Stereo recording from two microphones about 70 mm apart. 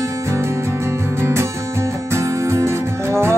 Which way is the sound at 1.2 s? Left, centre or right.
Right.